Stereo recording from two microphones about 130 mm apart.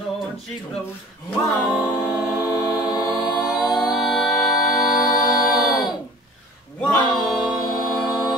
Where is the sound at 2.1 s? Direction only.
5° right (ahead or behind).